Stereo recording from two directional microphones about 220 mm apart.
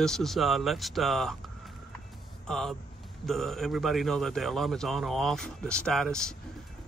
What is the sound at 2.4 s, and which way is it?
A man's voice, centre (ahead or behind).